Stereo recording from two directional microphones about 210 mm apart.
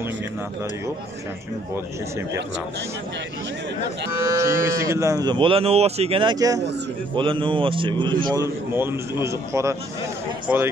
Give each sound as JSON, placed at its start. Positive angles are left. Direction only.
{"t": 4.4, "sound": "a man's voice", "side_deg": -15}